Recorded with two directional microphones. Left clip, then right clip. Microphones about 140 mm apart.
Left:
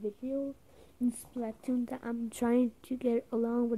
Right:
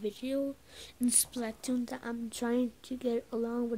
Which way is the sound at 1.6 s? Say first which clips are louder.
Even; 45° left (ahead or behind).